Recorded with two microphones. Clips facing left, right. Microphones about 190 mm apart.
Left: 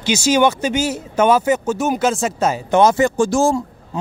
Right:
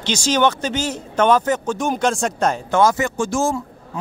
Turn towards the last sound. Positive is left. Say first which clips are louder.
# left 5 dB
turn(degrees=30)  # may be behind; listen again after turning